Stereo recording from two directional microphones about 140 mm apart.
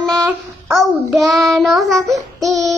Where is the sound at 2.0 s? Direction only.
25° right (ahead or behind).